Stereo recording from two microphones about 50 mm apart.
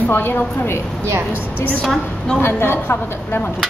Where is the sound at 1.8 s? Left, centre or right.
Centre.